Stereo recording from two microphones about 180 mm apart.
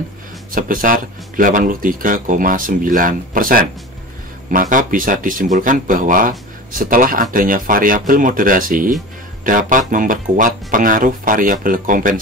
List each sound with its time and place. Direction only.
0.5 s speech: 50° right (ahead or behind)